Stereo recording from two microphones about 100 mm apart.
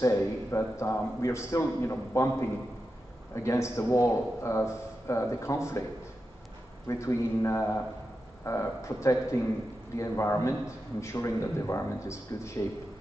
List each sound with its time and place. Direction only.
0.0 s a man's voice: 30° left (ahead or behind)
3.3 s a man's voice: 30° left (ahead or behind)
6.9 s a man's voice: 30° left (ahead or behind)